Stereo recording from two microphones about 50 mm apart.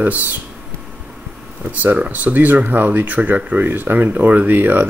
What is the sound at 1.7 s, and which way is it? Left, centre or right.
Speech, right.